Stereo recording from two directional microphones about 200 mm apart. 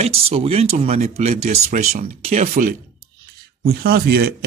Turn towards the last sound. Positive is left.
turn(degrees=-50)  # may be behind; listen again after turning